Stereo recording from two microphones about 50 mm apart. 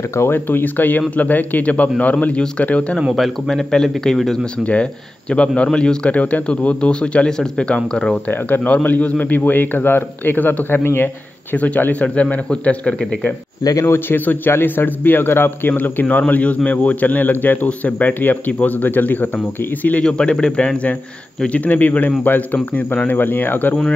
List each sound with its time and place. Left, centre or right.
0.3 s a man's voice: left
3.2 s a man's voice: centre
5.6 s a man's voice: centre
8.3 s a man's voice: left
11.5 s a man's voice: left
13.8 s a man's voice: left
20.0 s a man's voice: centre; by 23.8 s left